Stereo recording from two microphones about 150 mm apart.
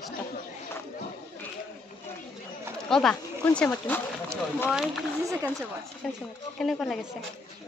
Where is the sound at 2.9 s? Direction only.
5° left (ahead or behind).